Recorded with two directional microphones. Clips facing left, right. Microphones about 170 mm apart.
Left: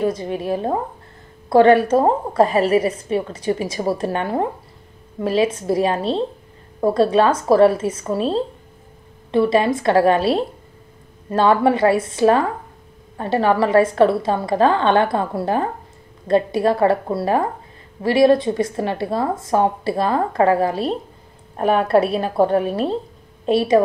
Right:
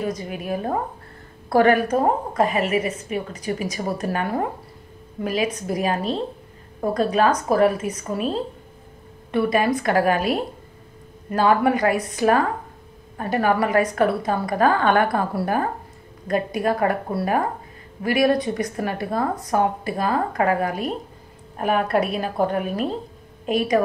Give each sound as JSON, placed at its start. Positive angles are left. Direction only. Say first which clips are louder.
{"t": 0.0, "sound": "a woman's voice", "louder": "left 6 dB", "side_deg": 30}